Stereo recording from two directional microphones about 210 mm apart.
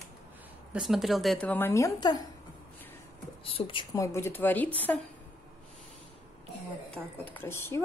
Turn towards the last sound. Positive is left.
turn(degrees=10)  # may be behind; listen again after turning